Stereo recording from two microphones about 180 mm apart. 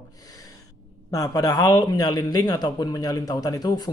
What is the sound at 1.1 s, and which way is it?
Speech, 20° left (ahead or behind).